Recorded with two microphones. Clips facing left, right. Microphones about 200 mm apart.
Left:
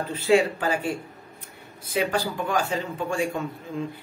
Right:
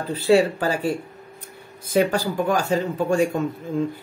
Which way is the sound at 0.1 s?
35° right (ahead or behind).